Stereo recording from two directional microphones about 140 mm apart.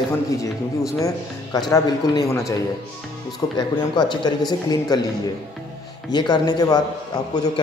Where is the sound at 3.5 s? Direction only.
30° left (ahead or behind).